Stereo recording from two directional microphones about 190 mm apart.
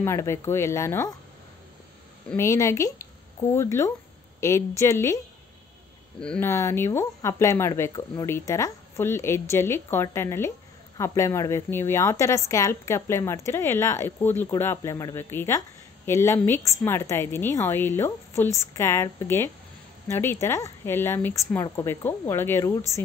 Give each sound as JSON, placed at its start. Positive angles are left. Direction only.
{"t": 0.0, "sound": "a woman's voice", "side_deg": 15}
{"t": 2.2, "sound": "a woman's voice", "side_deg": 15}